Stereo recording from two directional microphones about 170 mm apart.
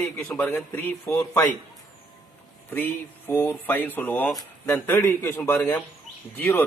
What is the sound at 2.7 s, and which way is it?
A man's voice, 15° left (ahead or behind).